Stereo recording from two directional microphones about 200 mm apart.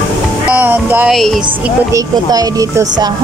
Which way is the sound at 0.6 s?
10° right (ahead or behind).